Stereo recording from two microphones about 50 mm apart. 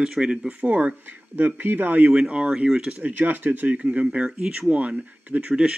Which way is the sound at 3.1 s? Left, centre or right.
Right.